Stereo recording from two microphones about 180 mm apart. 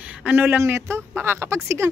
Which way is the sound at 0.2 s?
10° right (ahead or behind).